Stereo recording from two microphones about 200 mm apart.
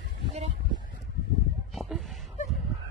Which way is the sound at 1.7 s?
Centre (ahead or behind).